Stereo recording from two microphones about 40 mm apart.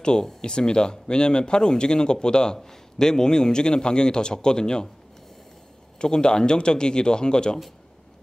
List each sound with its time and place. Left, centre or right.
0.0 s speech: left
5.9 s speech: left